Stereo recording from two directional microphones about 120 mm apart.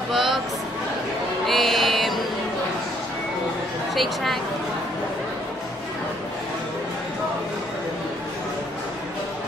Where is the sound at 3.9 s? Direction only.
Centre (ahead or behind).